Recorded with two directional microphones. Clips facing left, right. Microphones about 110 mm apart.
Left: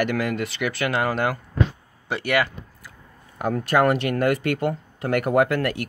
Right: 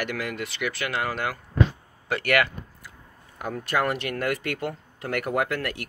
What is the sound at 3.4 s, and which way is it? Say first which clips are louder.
Speech: left 6 dB; 60° left (ahead or behind).